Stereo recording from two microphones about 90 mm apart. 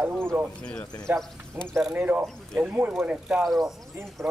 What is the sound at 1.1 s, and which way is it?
Speech, 20° right (ahead or behind).